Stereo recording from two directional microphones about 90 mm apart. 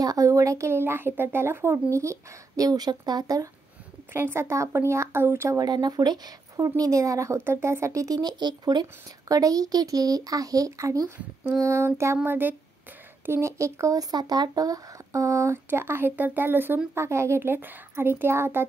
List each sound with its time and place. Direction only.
0.0 s speech: 45° right (ahead or behind)
4.1 s speech: 25° right (ahead or behind)
5.6 s speech: 50° right (ahead or behind)
9.3 s speech: 40° right (ahead or behind)